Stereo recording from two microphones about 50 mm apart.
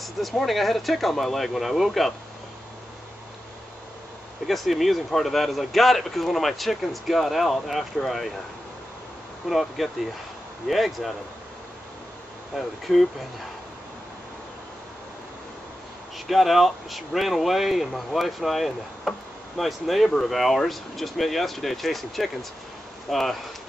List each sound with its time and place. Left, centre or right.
0.0 s speech: centre
4.5 s speech: centre
9.5 s speech: centre
12.5 s speech: centre
16.3 s speech: centre